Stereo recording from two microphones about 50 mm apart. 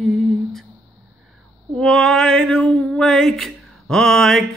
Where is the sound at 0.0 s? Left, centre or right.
Centre.